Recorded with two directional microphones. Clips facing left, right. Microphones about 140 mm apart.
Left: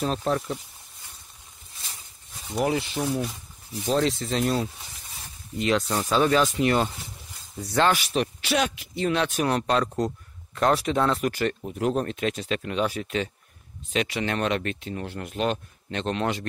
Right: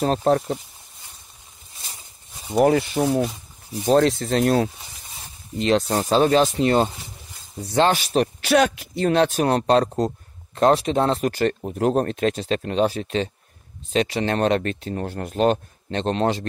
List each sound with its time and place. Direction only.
0.0 s speech: 45° right (ahead or behind)
1.8 s a sound: 15° right (ahead or behind)
2.5 s speech: 50° right (ahead or behind)
5.6 s speech: 30° right (ahead or behind)
5.9 s speech: 45° right (ahead or behind)
6.1 s speech: 30° right (ahead or behind)
8.0 s speech: 40° right (ahead or behind)